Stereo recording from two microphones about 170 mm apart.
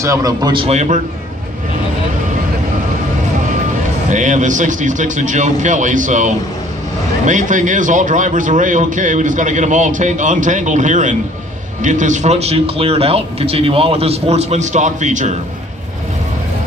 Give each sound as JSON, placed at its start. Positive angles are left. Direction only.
{"t": 0.0, "sound": "a man's voice", "side_deg": -20}
{"t": 4.1, "sound": "a man's voice", "side_deg": -45}